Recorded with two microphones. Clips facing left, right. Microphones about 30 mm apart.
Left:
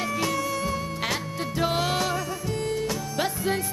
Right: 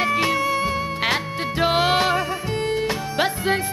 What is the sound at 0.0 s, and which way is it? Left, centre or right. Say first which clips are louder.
Music: right 7 dB; right.